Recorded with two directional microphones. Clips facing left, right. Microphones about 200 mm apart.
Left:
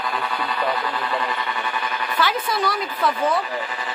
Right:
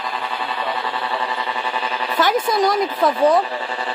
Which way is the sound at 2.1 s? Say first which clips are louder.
Right 6 dB; 45° right (ahead or behind).